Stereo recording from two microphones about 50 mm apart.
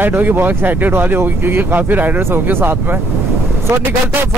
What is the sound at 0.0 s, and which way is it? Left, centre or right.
Speech, right.